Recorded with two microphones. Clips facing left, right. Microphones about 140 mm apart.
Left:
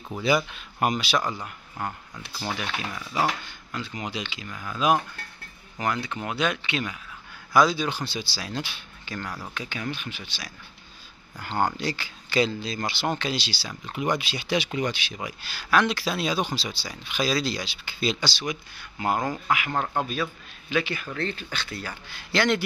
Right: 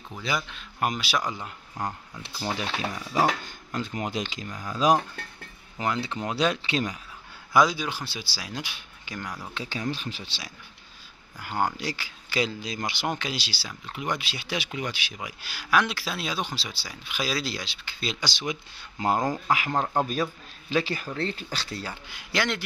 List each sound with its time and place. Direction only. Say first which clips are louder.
0.1 s speech: left 7 dB; 5° left (ahead or behind)
1.2 s speech: left 1 dB; 15° right (ahead or behind)
2.2 s speech: right 1 dB; 30° right (ahead or behind)
3.4 s speech: right 3 dB; 45° right (ahead or behind)
5.8 s speech: even; 25° right (ahead or behind)
7.5 s speech: left 1 dB; 10° right (ahead or behind)
9.5 s speech: right 5 dB; 30° right (ahead or behind)
11.3 s speech: left 2 dB; 10° right (ahead or behind)
18.2 s speech: left 1 dB; 20° right (ahead or behind)
19.2 s speech: right 2 dB; 15° right (ahead or behind)
19.9 s speech: right 2 dB; 40° right (ahead or behind)
22.0 s speech: left 3 dB; 15° right (ahead or behind)